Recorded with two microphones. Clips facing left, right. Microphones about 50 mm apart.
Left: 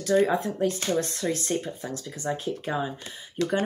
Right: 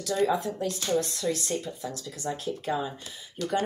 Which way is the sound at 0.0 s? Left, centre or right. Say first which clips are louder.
Left 3 dB; left.